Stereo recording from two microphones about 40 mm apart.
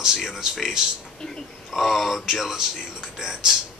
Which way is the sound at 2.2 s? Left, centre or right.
Centre.